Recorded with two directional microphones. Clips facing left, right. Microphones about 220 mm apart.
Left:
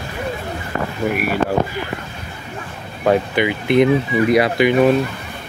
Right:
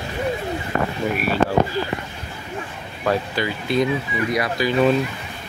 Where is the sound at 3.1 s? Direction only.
20° left (ahead or behind).